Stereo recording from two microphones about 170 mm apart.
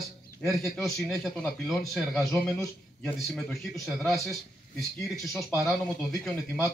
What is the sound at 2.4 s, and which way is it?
Speech, 5° left (ahead or behind).